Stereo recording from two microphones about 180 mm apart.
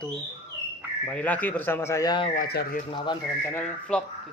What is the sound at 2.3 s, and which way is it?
Speech, 55° left (ahead or behind).